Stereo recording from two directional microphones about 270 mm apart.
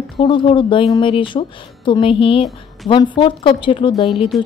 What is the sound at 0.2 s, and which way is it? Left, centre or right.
A woman's voice, centre.